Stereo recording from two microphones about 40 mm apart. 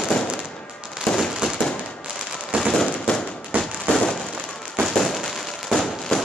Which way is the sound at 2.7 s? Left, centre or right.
Centre.